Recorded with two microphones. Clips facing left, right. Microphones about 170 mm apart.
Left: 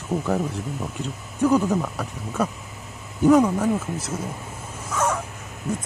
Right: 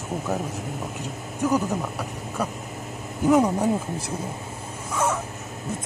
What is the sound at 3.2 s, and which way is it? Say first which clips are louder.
Speech: left 2 dB; 15° right (ahead or behind).